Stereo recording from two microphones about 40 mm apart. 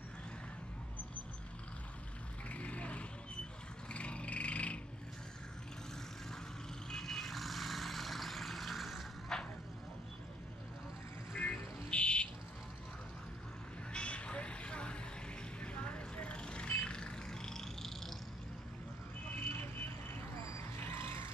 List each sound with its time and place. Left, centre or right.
2.5 s vehicle: left
3.9 s a sound: left
6.9 s vehicle: centre
9.3 s a sound: centre
11.3 s music: left
13.9 s vehicle: left; by 18.1 s centre
20.8 s vehicle: left